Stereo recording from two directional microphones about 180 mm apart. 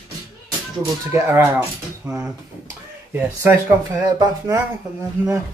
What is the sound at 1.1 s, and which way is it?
Speech, 15° right (ahead or behind).